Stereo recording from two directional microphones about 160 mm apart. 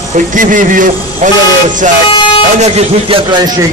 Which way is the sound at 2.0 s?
35° left (ahead or behind).